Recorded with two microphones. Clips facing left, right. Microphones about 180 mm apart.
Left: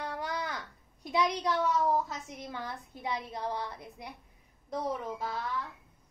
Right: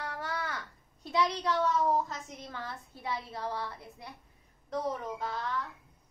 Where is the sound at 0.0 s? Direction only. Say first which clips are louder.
Left 1 dB; 15° left (ahead or behind).